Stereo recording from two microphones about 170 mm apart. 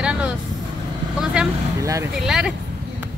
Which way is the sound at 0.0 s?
5° right (ahead or behind).